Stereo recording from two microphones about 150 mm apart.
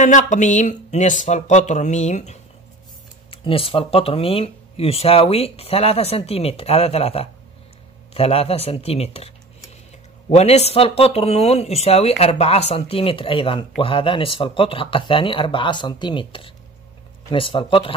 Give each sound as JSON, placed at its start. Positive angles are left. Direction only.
{"t": 0.0, "sound": "speech", "side_deg": 55}
{"t": 3.3, "sound": "speech", "side_deg": 40}
{"t": 10.3, "sound": "speech", "side_deg": 45}